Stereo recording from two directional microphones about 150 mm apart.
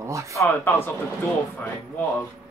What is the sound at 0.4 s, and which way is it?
Speech, 15° left (ahead or behind).